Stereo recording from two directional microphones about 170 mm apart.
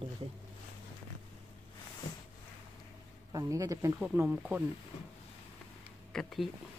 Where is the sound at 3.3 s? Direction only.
20° right (ahead or behind).